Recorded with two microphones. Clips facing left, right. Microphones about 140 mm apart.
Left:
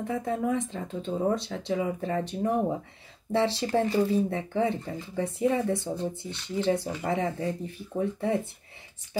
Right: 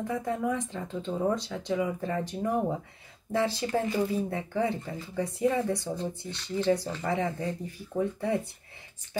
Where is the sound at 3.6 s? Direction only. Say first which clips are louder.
Left 3 dB; 30° left (ahead or behind).